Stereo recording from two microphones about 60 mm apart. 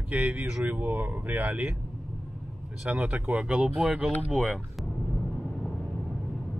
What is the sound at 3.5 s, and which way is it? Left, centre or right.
Speech, centre.